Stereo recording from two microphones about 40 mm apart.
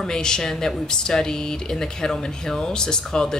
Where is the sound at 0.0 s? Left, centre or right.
Centre.